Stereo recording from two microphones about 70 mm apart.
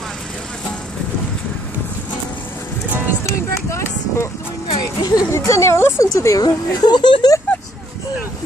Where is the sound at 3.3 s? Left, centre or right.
Left.